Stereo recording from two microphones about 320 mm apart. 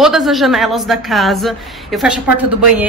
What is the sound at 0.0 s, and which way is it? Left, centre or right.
Speech, centre.